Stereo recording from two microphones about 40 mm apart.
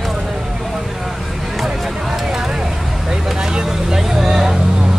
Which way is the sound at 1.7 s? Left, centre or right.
Centre.